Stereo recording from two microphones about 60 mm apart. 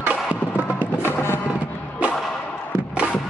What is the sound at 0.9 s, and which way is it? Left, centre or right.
Music, left.